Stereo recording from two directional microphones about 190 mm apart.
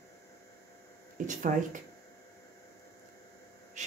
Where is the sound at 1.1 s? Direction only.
45° right (ahead or behind).